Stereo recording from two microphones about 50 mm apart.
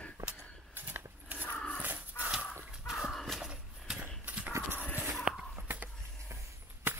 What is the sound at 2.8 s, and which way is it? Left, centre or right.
Crow, centre.